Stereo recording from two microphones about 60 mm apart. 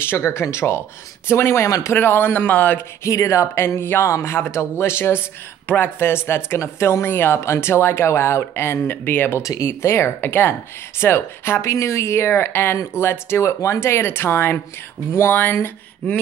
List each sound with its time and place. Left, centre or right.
0.0 s speech: left
2.0 s speech: left
3.0 s speech: left
9.6 s speech: left